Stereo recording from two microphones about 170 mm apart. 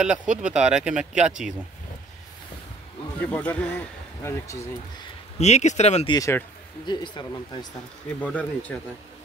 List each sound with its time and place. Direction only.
0.0 s speech: 5° right (ahead or behind)
3.2 s speech: 10° left (ahead or behind)
5.4 s speech: 40° left (ahead or behind)
6.0 s speech: 20° left (ahead or behind)
8.2 s speech: 10° left (ahead or behind)